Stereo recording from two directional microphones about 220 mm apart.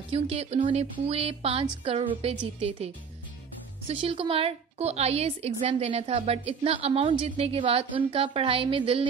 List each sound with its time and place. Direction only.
0.1 s a woman's voice: 30° right (ahead or behind)
3.9 s a woman's voice: 25° right (ahead or behind)